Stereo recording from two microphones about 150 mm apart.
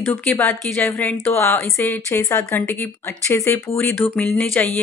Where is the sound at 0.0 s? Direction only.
15° left (ahead or behind).